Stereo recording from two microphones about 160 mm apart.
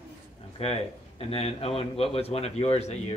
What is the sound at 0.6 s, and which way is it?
A man's voice, 40° left (ahead or behind).